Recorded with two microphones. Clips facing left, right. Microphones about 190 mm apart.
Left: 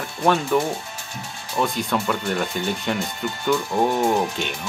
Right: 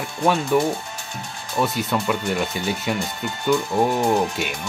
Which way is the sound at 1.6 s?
5° right (ahead or behind).